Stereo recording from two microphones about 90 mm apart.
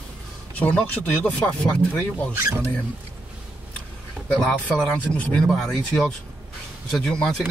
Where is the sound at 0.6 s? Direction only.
15° left (ahead or behind).